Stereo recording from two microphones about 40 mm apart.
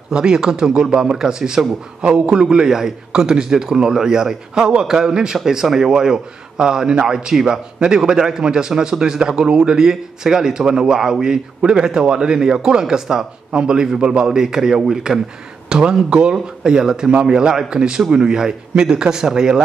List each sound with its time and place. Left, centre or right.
0.1 s a man's voice: centre